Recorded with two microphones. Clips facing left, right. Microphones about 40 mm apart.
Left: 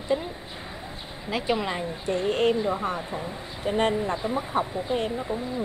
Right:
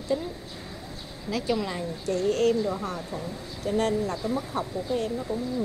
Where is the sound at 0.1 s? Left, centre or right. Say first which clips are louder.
Left 1 dB; left.